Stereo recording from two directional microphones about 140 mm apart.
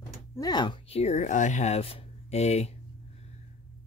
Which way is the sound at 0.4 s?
30° left (ahead or behind).